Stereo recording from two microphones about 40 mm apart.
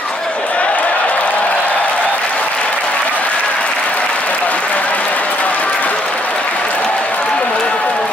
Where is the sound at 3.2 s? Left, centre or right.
Left.